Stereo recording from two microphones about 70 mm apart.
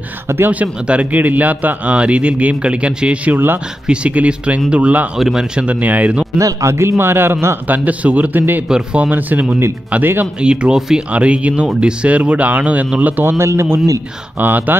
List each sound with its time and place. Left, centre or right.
0.5 s a man's voice: centre
6.3 s a man's voice: right
8.6 s speech: centre
9.1 s a man's voice: right
10.4 s a man's voice: centre; by 13.7 s right
14.4 s a man's voice: right